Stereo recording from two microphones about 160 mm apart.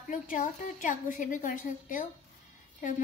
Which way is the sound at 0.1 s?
55° left (ahead or behind).